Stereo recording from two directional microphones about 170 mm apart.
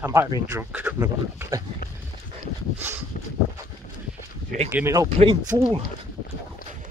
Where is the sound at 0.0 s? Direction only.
15° right (ahead or behind).